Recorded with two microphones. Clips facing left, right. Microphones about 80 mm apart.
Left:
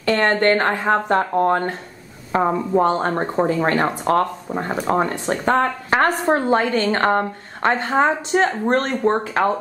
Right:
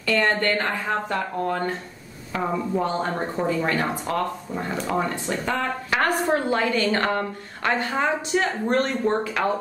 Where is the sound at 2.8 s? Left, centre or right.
Left.